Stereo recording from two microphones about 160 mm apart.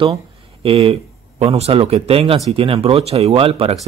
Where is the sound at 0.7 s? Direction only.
35° right (ahead or behind).